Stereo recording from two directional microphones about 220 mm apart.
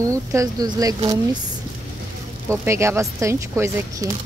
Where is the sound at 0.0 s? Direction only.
15° right (ahead or behind).